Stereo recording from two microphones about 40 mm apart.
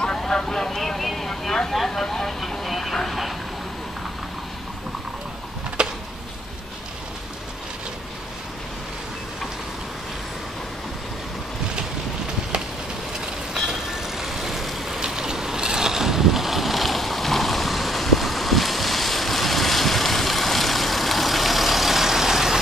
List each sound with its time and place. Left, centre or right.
0.4 s vehicle: centre
1.7 s speech: centre
5.8 s a sound: right
13.7 s vehicle: centre
15.0 s vehicle: centre